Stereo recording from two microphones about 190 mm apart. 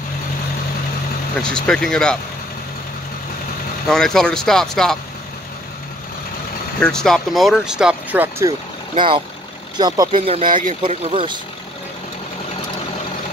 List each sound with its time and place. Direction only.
1.4 s speech: 5° left (ahead or behind)
3.9 s speech: 5° left (ahead or behind)
6.8 s speech: 5° left (ahead or behind)
8.9 s speech: 25° right (ahead or behind)
10.5 s speech: 45° right (ahead or behind)
10.8 s speech: 30° right (ahead or behind)